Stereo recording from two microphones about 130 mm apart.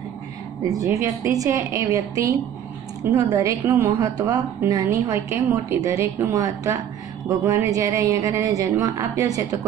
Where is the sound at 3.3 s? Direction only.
25° right (ahead or behind).